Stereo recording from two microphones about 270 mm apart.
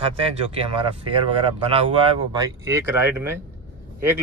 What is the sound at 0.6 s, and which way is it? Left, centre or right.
Speech, centre.